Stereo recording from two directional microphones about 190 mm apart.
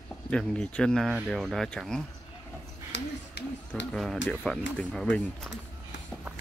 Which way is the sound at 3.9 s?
5° left (ahead or behind).